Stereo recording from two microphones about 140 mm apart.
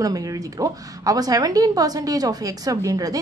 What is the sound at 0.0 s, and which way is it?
A woman's voice, 25° right (ahead or behind).